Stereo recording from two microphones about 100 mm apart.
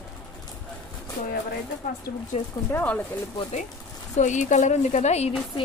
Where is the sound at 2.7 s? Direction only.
15° left (ahead or behind).